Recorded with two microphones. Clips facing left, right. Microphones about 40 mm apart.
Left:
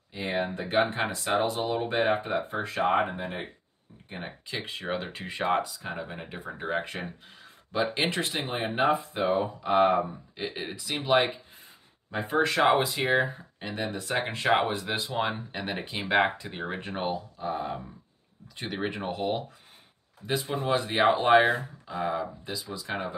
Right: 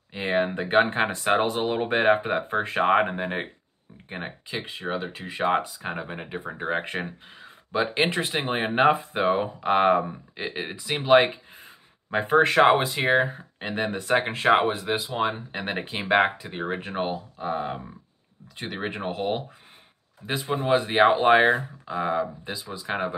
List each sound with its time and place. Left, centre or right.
0.1 s a sound: right
0.6 s speech: right
4.5 s speech: centre
5.8 s speech: right
8.5 s speech: right
10.3 s speech: right
11.1 s speech: right
14.1 s speech: centre
15.6 s speech: right
17.4 s speech: right
18.6 s speech: centre
20.4 s speech: right